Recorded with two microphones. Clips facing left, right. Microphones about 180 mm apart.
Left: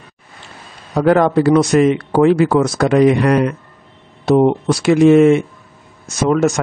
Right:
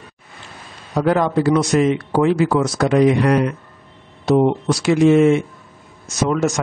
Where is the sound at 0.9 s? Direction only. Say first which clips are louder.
Left 4 dB; 60° left (ahead or behind).